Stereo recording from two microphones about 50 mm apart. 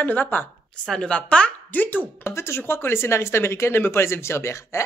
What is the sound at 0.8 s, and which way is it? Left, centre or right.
Speech, centre.